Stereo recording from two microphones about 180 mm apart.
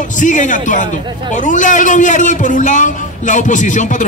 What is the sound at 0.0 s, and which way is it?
A man's voice, 45° left (ahead or behind).